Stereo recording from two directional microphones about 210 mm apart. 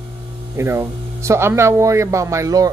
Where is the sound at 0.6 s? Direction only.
15° right (ahead or behind).